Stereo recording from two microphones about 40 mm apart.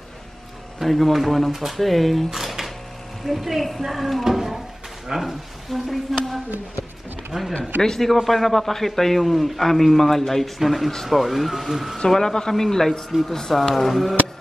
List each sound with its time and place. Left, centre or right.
0.7 s a man's voice: centre
4.2 s a sound: centre
5.0 s a man's voice: centre
7.3 s speech: centre
7.8 s a man's voice: centre
12.1 s a man's voice: centre